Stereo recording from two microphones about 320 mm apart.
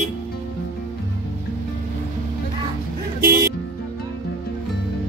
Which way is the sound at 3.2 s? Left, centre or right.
Right.